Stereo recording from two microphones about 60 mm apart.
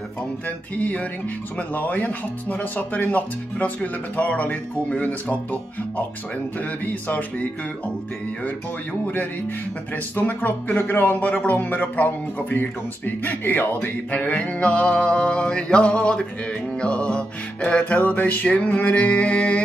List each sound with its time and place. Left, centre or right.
0.7 s speech: left
9.0 s speech: left